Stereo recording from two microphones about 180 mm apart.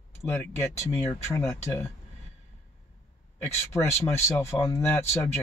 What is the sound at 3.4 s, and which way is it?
Speech, 15° left (ahead or behind).